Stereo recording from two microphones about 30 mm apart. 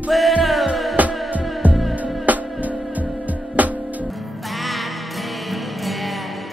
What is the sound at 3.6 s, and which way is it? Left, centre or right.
Music, right.